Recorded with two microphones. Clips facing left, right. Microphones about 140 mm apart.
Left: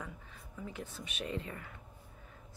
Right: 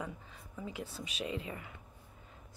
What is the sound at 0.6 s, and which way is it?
Speech, 10° right (ahead or behind).